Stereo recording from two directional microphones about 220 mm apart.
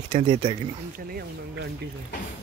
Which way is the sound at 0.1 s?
20° right (ahead or behind).